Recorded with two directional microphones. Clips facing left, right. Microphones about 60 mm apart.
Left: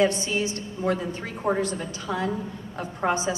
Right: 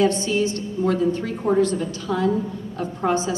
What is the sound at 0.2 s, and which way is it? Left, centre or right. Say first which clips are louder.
A woman's voice: right 5 dB; left.